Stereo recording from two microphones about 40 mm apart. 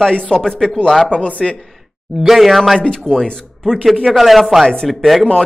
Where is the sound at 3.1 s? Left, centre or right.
Centre.